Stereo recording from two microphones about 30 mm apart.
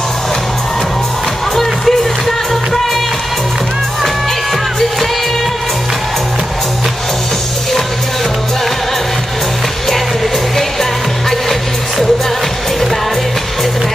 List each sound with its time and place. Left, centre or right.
1.6 s music: centre